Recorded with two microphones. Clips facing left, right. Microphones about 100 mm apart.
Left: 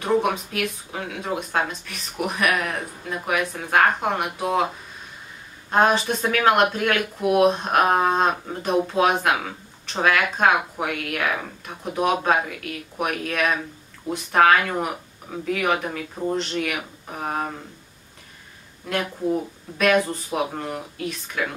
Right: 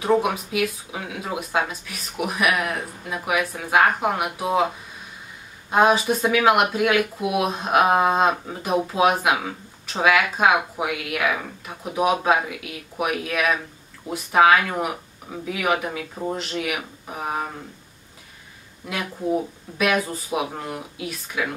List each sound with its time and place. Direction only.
0.0 s speech: 5° right (ahead or behind)
5.7 s speech: 5° right (ahead or behind)
18.9 s speech: 5° right (ahead or behind)